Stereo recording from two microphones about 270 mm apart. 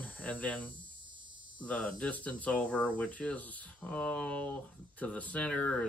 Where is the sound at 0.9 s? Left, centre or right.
Centre.